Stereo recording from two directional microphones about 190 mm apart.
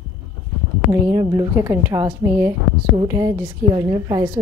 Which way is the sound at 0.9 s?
15° right (ahead or behind).